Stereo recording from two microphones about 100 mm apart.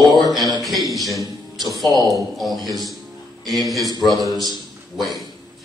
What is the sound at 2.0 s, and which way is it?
Speech, 35° left (ahead or behind).